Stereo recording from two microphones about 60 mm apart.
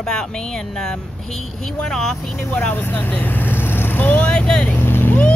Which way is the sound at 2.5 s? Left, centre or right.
Left.